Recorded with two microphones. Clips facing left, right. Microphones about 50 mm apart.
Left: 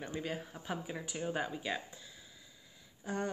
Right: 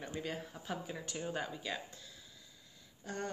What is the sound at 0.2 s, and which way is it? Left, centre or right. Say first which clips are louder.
Speech: left 2 dB; centre.